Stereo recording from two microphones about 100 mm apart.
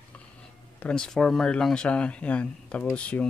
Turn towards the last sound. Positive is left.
turn(degrees=10)  # may be behind; listen again after turning